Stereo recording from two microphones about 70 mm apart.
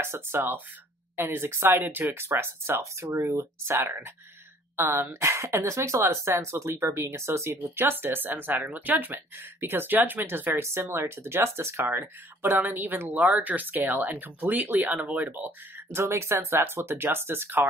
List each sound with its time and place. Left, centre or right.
0.0 s speech: right